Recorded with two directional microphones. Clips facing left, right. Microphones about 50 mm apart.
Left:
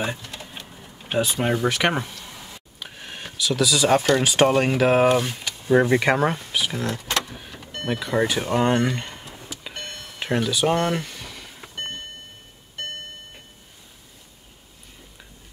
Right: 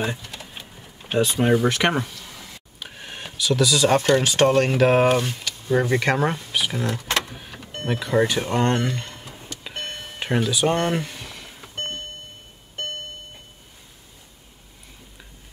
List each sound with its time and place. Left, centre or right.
0.0 s typing: centre
2.8 s speech: centre
5.4 s speech: left
5.9 s speech: centre
7.2 s vehicle: centre
7.8 s speech: centre
8.9 s a sound: centre
9.5 s vehicle: centre
9.8 s a sound: centre
10.1 s a sound: centre